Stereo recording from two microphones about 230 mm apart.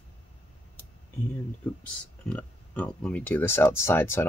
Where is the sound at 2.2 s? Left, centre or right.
Centre.